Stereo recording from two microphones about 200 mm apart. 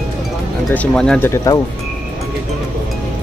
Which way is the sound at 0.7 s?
5° left (ahead or behind).